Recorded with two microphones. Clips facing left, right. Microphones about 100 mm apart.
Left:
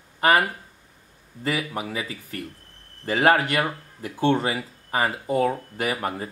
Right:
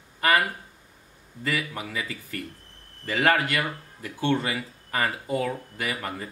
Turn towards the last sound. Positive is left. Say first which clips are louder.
# left 5 dB
turn(degrees=30)  # may be behind; listen again after turning